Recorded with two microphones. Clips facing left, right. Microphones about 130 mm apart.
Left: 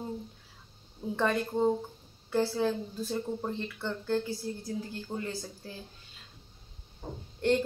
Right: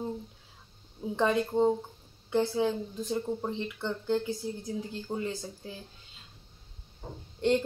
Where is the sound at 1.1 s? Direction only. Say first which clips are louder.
Right 3 dB; 15° right (ahead or behind).